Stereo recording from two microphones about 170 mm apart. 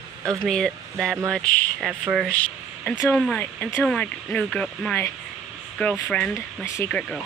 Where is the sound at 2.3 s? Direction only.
5° left (ahead or behind).